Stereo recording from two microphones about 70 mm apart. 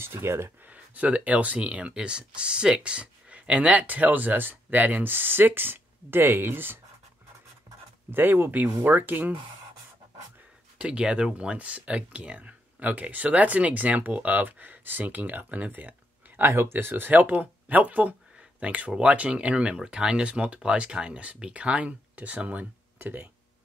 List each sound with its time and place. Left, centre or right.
0.0 s speech: right
0.7 s speech: right
8.1 s speech: right
10.8 s speech: centre
16.3 s speech: right